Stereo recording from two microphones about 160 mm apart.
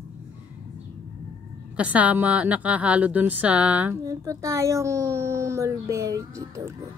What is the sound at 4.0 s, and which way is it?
Speech, 20° right (ahead or behind).